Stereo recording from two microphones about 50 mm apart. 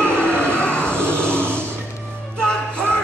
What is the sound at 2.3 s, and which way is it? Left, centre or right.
Music, centre.